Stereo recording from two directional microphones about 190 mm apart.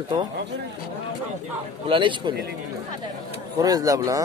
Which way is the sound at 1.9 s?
25° right (ahead or behind).